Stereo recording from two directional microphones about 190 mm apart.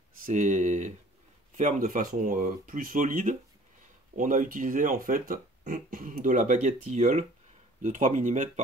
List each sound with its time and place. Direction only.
0.2 s speech: 40° right (ahead or behind)